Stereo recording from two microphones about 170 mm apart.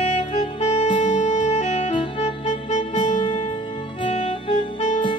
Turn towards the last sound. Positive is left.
turn(degrees=40)  # may be behind; listen again after turning